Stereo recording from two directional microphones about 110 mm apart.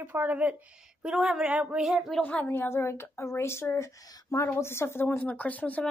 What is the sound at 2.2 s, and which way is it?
A woman's voice, 15° left (ahead or behind).